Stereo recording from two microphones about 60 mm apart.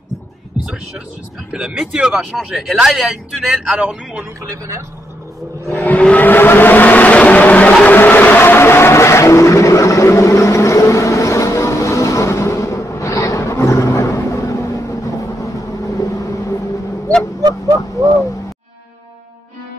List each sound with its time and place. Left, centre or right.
1.5 s speech: centre
4.4 s a man's voice: right
5.9 s vehicle: left